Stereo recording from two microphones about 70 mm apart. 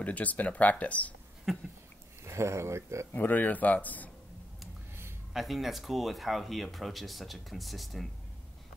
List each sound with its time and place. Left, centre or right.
0.0 s speech: left
1.5 s a sound: centre
2.2 s speech: right
3.1 s speech: left
5.3 s speech: centre